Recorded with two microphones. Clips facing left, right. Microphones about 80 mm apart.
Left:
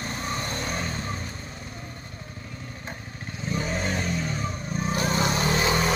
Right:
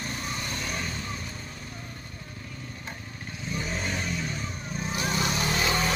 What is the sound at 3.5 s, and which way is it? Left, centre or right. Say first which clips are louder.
Vehicle: left 4 dB; left.